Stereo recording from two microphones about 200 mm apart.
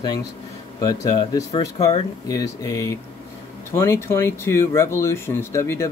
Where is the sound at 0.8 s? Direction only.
20° left (ahead or behind).